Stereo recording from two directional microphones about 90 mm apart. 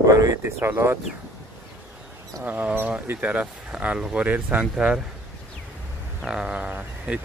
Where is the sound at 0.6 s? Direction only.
25° right (ahead or behind).